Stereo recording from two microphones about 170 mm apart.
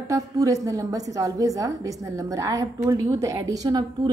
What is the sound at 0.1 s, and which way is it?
A woman's voice, 20° right (ahead or behind).